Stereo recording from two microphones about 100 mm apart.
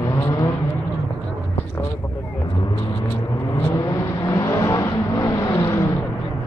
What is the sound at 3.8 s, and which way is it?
Vehicle, 35° left (ahead or behind).